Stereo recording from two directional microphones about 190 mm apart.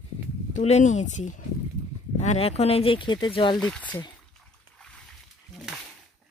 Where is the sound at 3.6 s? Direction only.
5° left (ahead or behind).